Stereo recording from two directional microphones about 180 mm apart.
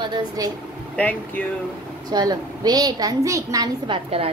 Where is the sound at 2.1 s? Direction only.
20° right (ahead or behind).